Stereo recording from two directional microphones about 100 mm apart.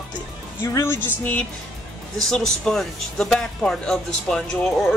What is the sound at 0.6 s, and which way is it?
Music, 25° left (ahead or behind).